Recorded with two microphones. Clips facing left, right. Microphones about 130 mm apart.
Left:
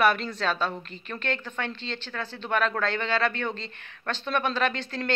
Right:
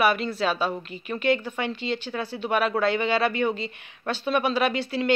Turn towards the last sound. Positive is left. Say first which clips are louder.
# right 4 dB
turn(degrees=-10)  # may be behind; listen again after turning